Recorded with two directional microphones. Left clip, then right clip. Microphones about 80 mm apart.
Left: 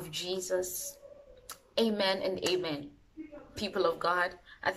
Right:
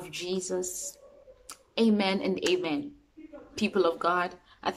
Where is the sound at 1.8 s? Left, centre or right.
Right.